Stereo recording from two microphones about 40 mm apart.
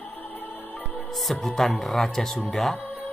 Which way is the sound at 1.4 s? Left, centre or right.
Centre.